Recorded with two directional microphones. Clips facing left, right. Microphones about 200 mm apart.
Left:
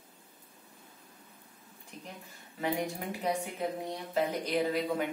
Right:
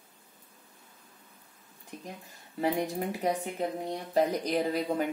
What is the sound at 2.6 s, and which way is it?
A woman's voice, 40° right (ahead or behind).